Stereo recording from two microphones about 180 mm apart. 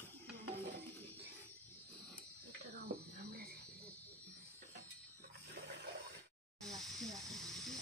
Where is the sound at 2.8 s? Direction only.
55° right (ahead or behind).